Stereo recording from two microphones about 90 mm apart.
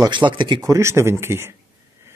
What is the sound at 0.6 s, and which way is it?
Speech, 30° right (ahead or behind).